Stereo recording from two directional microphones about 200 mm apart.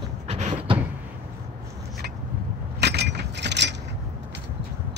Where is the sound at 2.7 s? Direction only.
55° right (ahead or behind).